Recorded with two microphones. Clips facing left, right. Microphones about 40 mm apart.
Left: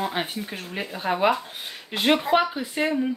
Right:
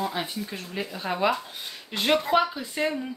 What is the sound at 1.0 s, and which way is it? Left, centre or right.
Speech, centre.